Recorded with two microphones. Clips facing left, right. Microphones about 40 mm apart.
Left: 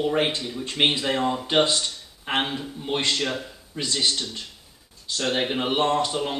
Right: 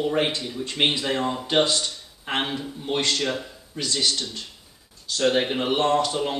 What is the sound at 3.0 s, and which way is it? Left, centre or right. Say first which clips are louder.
Speech: even; left.